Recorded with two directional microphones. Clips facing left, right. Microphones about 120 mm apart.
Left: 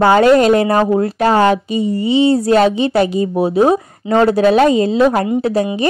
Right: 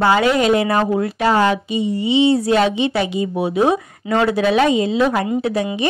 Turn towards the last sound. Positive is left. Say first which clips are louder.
# left 4 dB
turn(degrees=40)  # may be behind; listen again after turning